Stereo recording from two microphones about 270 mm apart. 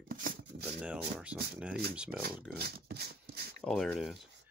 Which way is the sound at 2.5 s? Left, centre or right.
Right.